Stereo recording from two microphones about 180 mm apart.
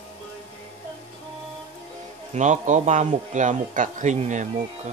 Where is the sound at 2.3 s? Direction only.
40° right (ahead or behind).